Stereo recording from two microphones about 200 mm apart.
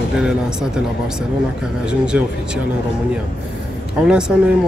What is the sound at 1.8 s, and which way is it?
Speech, 5° right (ahead or behind).